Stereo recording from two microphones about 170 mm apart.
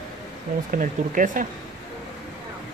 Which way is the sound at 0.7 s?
50° right (ahead or behind).